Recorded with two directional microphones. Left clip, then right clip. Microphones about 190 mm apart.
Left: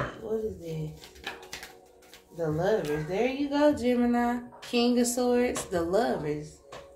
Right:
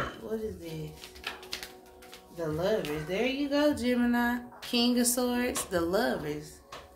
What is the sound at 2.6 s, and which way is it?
A woman's voice, 20° right (ahead or behind).